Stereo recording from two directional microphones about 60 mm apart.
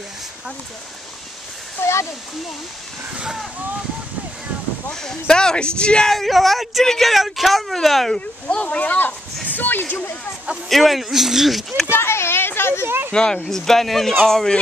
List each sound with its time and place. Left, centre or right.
1.8 s speech: left
3.1 s speech: centre
5.0 s speech: centre
6.1 s speech: centre
8.5 s speech: left
10.7 s speech: centre
11.9 s a sound: left
12.8 s speech: right
13.1 s speech: centre